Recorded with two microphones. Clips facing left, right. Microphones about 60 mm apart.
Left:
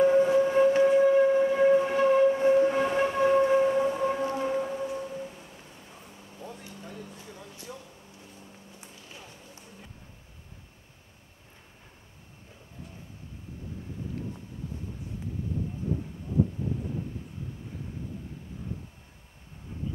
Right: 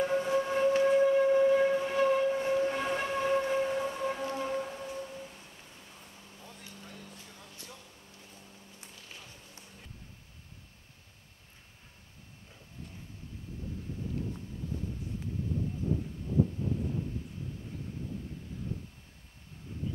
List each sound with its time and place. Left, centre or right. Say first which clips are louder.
0.0 s civil defense siren: left 8 dB; centre
1.7 s steam whistle: left 6 dB; centre
3.3 s civil defense siren: left 7 dB; centre
4.4 s music: left 6 dB; centre
5.6 s vehicle: left 4 dB; centre
6.6 s a sound: left 5 dB; centre
7.2 s music: left 7 dB; centre